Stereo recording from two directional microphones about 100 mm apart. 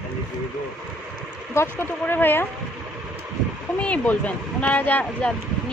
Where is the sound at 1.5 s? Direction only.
25° left (ahead or behind).